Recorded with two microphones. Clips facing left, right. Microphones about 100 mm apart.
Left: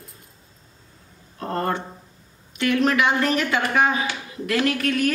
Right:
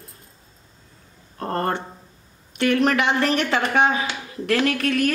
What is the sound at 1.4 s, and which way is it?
A woman's voice, 45° right (ahead or behind).